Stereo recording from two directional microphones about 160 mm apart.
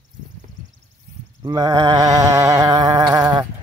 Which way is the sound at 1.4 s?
25° right (ahead or behind).